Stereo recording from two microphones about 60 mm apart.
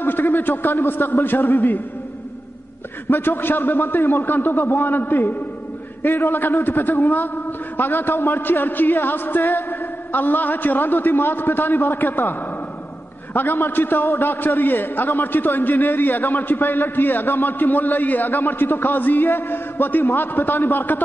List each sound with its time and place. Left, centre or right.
0.0 s a man's voice: left
3.1 s a man's voice: left